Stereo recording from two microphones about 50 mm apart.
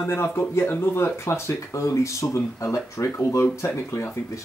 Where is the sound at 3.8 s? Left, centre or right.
Left.